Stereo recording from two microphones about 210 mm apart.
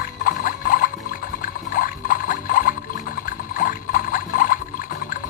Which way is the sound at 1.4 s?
40° left (ahead or behind).